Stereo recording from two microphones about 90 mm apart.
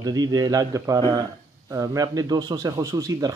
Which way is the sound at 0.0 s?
45° right (ahead or behind).